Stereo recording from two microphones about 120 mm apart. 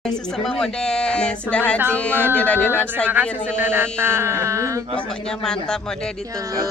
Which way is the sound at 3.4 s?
15° right (ahead or behind).